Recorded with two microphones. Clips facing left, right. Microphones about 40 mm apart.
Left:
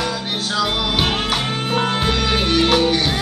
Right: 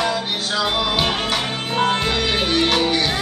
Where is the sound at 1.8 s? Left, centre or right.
Centre.